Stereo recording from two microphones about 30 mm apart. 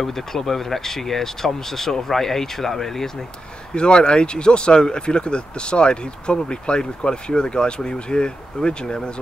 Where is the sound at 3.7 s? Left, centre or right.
Left.